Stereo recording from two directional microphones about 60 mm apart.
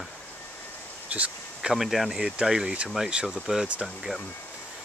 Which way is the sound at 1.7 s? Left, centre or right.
Centre.